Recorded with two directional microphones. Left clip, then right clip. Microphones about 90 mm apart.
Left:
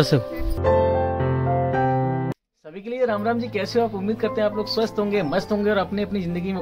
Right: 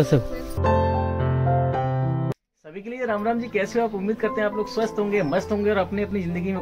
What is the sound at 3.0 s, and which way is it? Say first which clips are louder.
Speech: left 2 dB; 20° left (ahead or behind).